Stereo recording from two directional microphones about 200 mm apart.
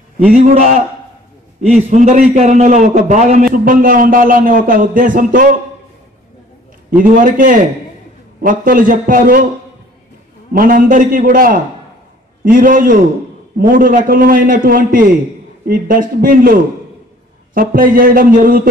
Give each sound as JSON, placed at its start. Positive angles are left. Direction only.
{"t": 0.3, "sound": "a man's voice", "side_deg": -40}
{"t": 1.9, "sound": "a man's voice", "side_deg": -40}
{"t": 7.0, "sound": "a man's voice", "side_deg": -40}
{"t": 10.5, "sound": "a man's voice", "side_deg": -45}